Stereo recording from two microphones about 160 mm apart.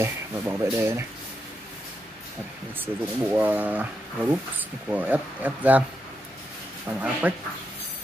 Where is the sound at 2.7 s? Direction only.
10° right (ahead or behind).